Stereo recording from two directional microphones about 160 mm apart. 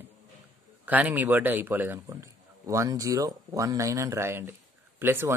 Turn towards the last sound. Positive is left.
turn(degrees=-15)  # may be behind; listen again after turning